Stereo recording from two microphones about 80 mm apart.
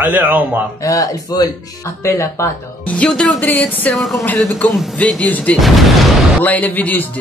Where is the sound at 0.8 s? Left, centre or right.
Left.